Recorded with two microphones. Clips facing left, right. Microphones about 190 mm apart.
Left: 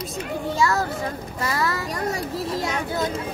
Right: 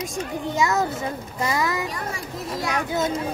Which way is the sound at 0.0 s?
15° right (ahead or behind).